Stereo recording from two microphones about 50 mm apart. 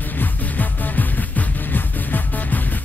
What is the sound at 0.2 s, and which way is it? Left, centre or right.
Music, left.